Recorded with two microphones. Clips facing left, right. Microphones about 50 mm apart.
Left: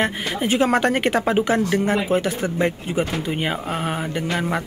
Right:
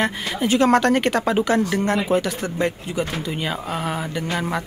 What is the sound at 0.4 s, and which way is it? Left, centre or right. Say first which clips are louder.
Speech: right 2 dB; centre.